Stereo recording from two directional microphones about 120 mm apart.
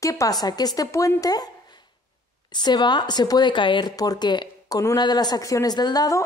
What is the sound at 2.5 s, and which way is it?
Speech, 35° left (ahead or behind).